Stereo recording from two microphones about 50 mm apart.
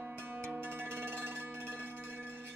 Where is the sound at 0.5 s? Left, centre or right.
Right.